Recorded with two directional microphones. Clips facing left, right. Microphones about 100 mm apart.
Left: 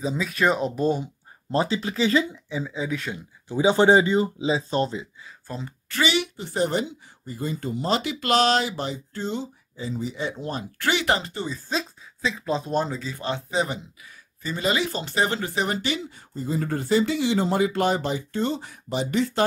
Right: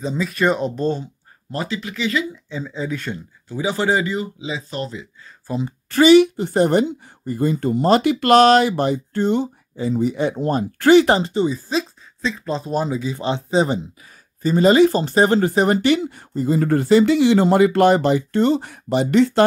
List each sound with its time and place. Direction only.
0.0 s speech: centre (ahead or behind)
1.5 s speech: 25° left (ahead or behind)
2.5 s speech: 5° left (ahead or behind)
3.4 s speech: 25° left (ahead or behind)
5.5 s speech: 10° right (ahead or behind)
5.9 s speech: 40° right (ahead or behind)
11.7 s speech: centre (ahead or behind)
13.1 s speech: 20° right (ahead or behind)
14.4 s speech: 40° right (ahead or behind); by 19.4 s 70° right (ahead or behind)